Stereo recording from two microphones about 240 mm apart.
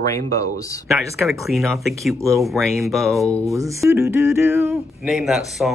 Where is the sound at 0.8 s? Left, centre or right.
Centre.